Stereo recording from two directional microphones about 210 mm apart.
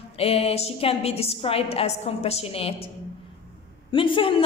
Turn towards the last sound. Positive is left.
turn(degrees=25)  # may be behind; listen again after turning